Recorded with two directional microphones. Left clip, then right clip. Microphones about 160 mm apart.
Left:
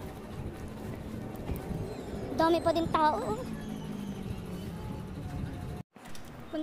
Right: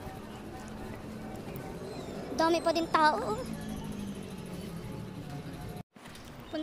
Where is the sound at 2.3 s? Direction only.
15° left (ahead or behind).